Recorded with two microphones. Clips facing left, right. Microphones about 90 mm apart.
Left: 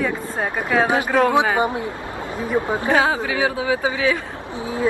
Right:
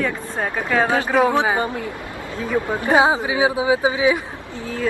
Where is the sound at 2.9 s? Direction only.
20° right (ahead or behind).